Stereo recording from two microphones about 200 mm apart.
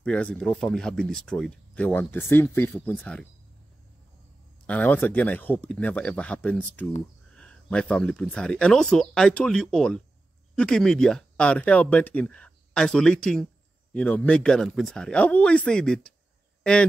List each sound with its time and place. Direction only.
0.0 s speech: 5° left (ahead or behind)
4.6 s speech: 10° left (ahead or behind)